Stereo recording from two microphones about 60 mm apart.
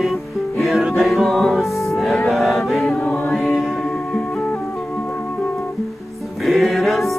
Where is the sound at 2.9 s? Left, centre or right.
Left.